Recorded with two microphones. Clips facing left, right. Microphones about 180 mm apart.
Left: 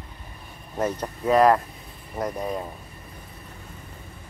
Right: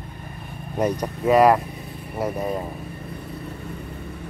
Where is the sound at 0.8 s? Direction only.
10° right (ahead or behind).